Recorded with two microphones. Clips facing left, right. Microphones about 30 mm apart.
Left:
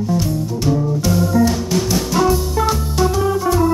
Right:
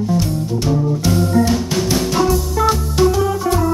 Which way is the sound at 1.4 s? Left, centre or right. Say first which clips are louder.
Even; centre.